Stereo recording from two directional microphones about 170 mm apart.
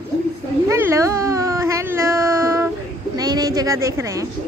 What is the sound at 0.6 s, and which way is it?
Baby cry, 15° right (ahead or behind).